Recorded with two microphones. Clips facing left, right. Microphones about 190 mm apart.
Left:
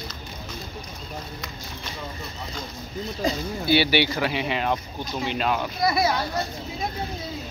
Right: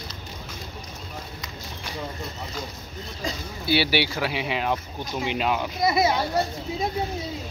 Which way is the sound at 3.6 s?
5° right (ahead or behind).